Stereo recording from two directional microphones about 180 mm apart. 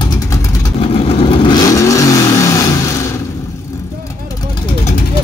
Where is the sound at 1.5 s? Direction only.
20° left (ahead or behind).